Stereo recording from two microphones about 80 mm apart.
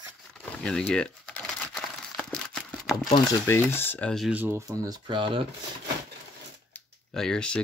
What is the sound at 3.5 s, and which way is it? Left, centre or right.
Speech, left.